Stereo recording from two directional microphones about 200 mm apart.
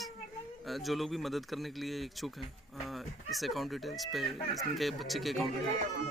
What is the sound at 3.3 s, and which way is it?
Speech, centre (ahead or behind).